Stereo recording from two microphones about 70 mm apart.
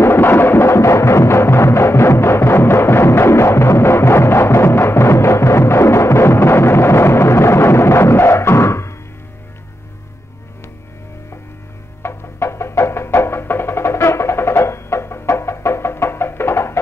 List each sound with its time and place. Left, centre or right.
0.0 s music: left
12.0 s music: left